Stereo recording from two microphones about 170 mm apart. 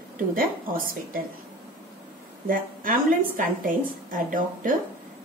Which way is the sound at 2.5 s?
55° right (ahead or behind).